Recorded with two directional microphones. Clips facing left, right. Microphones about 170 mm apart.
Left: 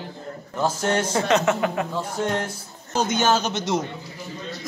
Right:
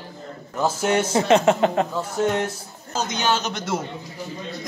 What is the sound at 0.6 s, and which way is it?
Speech, 10° right (ahead or behind).